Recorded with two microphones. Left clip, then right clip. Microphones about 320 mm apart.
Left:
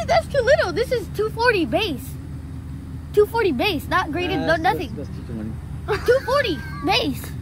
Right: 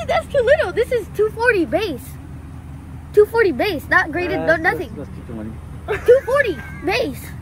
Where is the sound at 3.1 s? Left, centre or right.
Centre.